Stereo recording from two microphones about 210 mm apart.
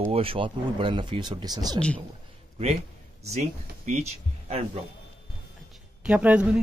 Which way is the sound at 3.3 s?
30° right (ahead or behind).